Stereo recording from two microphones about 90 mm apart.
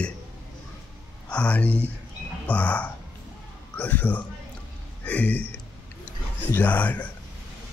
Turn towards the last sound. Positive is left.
turn(degrees=15)  # may be behind; listen again after turning